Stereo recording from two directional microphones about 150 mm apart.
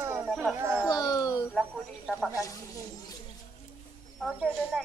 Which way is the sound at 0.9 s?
25° left (ahead or behind).